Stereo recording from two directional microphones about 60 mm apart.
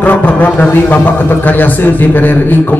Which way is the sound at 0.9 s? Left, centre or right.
Left.